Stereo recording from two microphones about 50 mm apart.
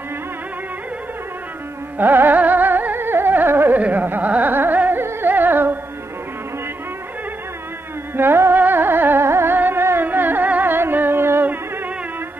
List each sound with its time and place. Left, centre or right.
2.0 s music: right
3.7 s carnatic music: right
8.2 s carnatic music: right
9.6 s music: right